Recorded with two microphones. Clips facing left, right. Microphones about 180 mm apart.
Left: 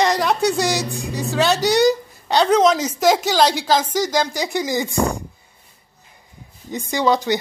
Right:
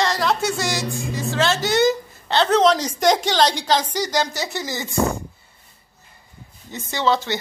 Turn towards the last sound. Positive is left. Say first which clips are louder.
# left 3 dB
turn(degrees=15)  # may be behind; listen again after turning